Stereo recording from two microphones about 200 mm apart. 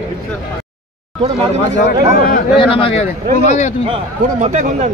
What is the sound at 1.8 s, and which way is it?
Speech, 45° left (ahead or behind).